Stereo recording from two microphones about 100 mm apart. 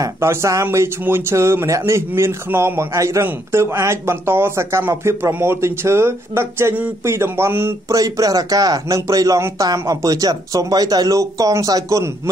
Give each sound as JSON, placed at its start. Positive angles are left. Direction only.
{"t": 0.0, "sound": "speech", "side_deg": -30}
{"t": 7.9, "sound": "speech", "side_deg": -35}